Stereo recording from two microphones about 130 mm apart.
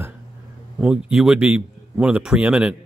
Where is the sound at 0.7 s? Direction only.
5° right (ahead or behind).